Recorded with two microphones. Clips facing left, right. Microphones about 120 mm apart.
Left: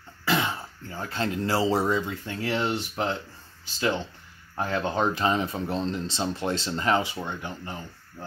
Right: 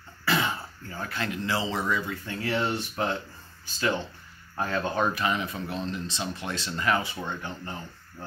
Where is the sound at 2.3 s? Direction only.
20° left (ahead or behind).